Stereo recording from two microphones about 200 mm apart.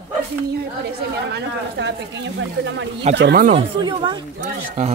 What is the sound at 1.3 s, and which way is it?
Speech, 60° right (ahead or behind).